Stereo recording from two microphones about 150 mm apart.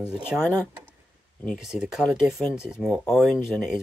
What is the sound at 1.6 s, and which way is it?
Speech, 5° right (ahead or behind).